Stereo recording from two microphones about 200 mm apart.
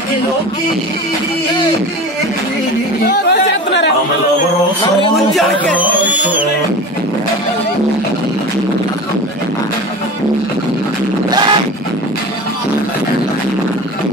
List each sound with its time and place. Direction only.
3.1 s speech: 50° left (ahead or behind)
5.8 s music: 10° right (ahead or behind)